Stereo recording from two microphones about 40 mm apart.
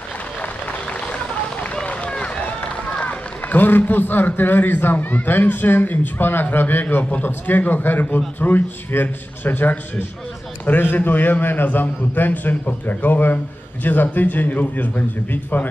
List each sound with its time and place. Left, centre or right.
2.0 s run: left
3.5 s a man's voice: left